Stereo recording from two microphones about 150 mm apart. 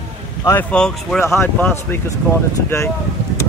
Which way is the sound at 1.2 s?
15° left (ahead or behind).